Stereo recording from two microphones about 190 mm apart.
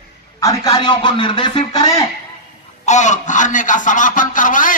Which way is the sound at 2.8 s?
40° left (ahead or behind).